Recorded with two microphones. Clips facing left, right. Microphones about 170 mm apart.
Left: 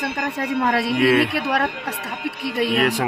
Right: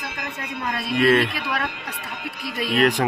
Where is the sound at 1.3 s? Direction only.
65° left (ahead or behind).